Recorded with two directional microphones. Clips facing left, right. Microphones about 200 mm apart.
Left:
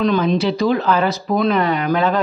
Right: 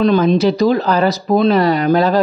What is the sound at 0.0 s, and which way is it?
Speech, 40° right (ahead or behind).